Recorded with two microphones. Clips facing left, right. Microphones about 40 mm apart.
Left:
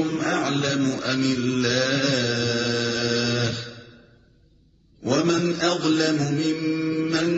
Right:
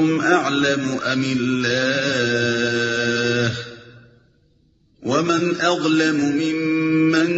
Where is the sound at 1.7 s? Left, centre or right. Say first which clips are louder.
Right 2 dB; right.